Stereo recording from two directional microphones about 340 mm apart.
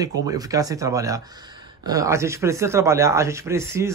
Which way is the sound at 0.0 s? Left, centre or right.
Centre.